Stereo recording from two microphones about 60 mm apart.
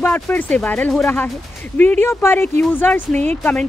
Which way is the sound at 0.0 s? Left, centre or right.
Left.